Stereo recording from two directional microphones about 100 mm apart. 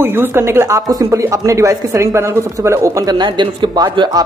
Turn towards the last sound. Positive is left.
turn(degrees=-45)  # may be behind; listen again after turning